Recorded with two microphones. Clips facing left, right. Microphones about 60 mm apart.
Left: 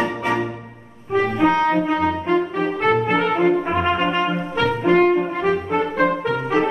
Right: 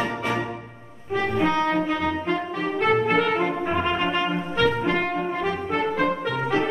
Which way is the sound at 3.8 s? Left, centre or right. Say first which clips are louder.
Left 4 dB; left.